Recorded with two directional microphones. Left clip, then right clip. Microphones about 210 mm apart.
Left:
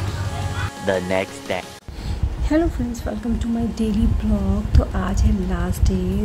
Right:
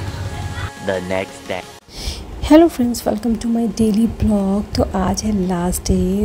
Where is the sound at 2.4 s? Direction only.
25° right (ahead or behind).